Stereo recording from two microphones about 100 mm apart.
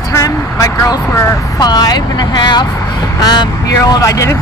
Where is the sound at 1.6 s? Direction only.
40° left (ahead or behind).